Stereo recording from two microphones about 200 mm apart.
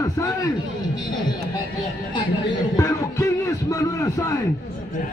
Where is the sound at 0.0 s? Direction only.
15° left (ahead or behind).